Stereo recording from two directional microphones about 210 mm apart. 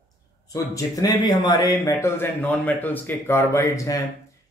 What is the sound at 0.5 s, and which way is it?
Speech, 15° left (ahead or behind).